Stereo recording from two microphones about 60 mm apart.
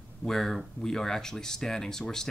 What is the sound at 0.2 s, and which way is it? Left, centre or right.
Speech, centre.